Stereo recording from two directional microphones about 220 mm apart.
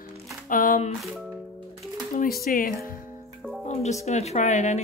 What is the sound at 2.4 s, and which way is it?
Speech, 40° left (ahead or behind).